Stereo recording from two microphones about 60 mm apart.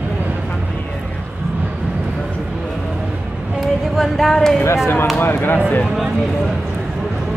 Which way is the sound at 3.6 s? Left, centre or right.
Centre.